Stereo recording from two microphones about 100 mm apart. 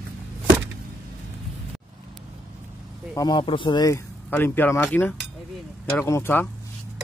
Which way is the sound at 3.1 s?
40° left (ahead or behind).